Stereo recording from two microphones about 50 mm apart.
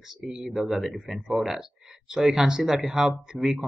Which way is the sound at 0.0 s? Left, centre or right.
Centre.